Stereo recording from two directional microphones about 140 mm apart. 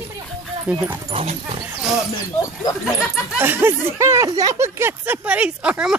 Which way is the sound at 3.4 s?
15° right (ahead or behind).